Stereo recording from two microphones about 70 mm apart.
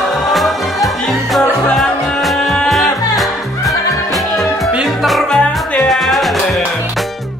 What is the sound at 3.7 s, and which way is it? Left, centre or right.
Music, left.